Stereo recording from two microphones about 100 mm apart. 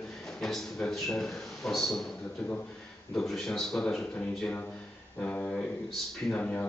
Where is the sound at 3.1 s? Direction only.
5° left (ahead or behind).